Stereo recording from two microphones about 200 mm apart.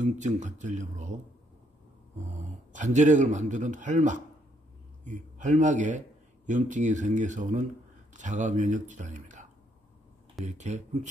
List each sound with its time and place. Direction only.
0.0 s speech: 35° right (ahead or behind)
2.4 s speech: 40° right (ahead or behind)